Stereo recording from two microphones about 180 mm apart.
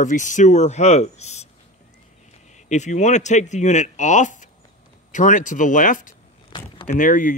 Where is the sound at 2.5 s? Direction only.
40° left (ahead or behind).